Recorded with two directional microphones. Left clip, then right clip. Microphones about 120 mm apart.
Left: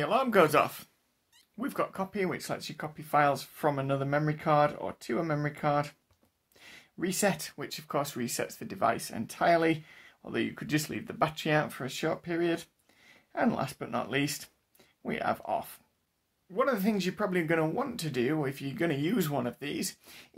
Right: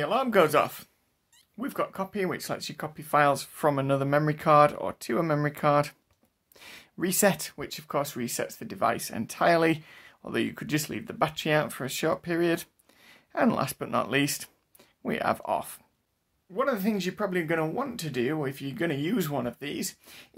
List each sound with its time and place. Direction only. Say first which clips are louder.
0.0 s speech: right 1 dB; 15° right (ahead or behind)
2.2 s speech: right 3 dB; 25° right (ahead or behind)
16.5 s speech: right 1 dB; 15° right (ahead or behind)